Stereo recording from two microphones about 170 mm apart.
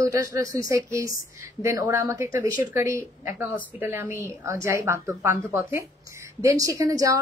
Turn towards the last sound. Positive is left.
turn(degrees=-20)  # may be behind; listen again after turning